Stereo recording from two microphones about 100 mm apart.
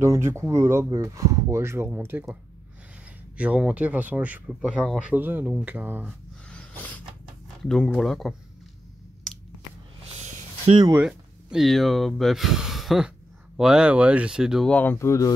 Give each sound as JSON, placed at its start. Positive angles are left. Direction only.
{"t": 0.0, "sound": "speech", "side_deg": -30}
{"t": 3.3, "sound": "speech", "side_deg": -15}
{"t": 6.5, "sound": "a sound", "side_deg": 15}
{"t": 7.6, "sound": "speech", "side_deg": 5}
{"t": 11.0, "sound": "speech", "side_deg": -5}
{"t": 14.7, "sound": "speech", "side_deg": 20}